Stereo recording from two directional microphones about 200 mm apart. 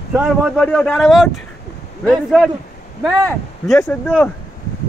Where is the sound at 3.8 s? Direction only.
5° left (ahead or behind).